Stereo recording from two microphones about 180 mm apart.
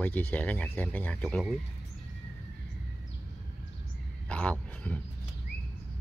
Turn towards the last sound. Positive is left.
turn(degrees=10)  # may be behind; listen again after turning